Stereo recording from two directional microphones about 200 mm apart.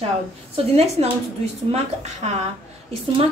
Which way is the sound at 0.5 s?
30° right (ahead or behind).